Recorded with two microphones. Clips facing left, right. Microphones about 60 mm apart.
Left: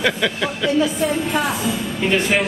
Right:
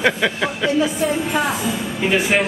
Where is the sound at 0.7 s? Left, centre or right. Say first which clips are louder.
Left 1 dB; centre.